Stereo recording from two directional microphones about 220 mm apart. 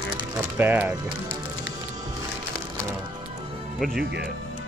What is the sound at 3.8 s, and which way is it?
Speech, 45° right (ahead or behind).